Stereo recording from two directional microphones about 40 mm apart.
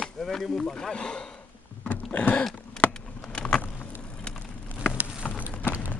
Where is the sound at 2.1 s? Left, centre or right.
Left.